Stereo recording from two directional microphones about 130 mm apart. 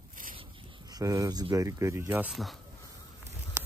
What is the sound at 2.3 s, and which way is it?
Speech, centre (ahead or behind).